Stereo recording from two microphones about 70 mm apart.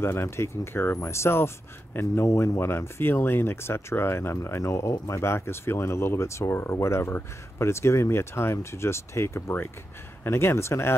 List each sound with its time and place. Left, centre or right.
0.0 s speech: left